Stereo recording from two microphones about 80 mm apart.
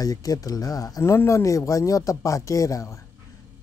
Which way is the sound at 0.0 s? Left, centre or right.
Left.